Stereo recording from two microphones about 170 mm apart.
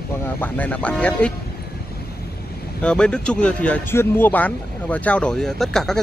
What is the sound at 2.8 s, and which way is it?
Speech, 5° left (ahead or behind).